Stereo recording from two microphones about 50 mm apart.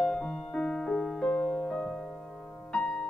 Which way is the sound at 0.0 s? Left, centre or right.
Centre.